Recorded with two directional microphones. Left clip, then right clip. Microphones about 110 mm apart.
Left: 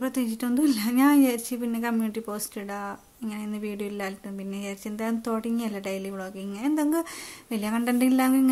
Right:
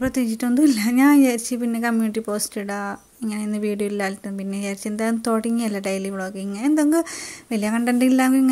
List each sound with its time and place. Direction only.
0.0 s speech: 30° right (ahead or behind)